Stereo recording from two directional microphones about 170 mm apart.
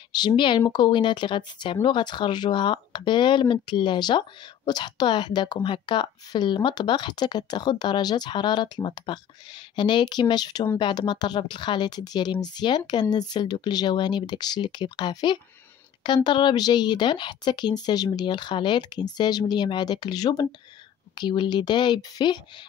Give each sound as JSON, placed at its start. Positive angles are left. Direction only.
{"t": 0.1, "sound": "speech", "side_deg": 25}